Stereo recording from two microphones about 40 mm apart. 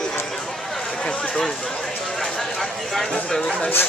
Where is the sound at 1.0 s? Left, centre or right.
Left.